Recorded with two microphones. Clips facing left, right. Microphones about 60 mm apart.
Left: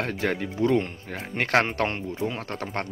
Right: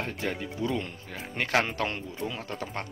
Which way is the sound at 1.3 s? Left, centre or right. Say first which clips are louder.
Left 4 dB; left.